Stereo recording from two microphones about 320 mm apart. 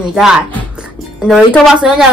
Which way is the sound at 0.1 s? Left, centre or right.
Centre.